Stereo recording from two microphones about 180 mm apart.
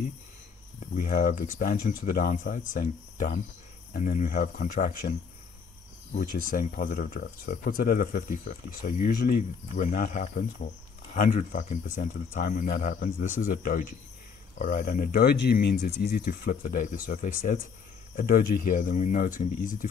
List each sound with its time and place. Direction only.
0.7 s speech: 45° left (ahead or behind)
6.5 s speech: 50° left (ahead or behind)